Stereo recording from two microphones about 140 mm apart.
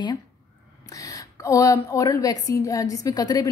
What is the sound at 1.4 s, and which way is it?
A woman's voice, 25° left (ahead or behind).